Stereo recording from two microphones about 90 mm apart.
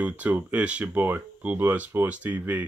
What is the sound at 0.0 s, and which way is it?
Speech, 15° right (ahead or behind).